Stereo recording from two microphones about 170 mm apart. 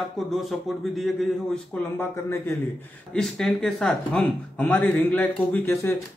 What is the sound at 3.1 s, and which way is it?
Speech, 5° left (ahead or behind).